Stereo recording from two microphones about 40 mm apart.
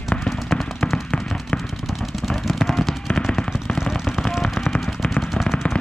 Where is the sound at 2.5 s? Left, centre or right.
Centre.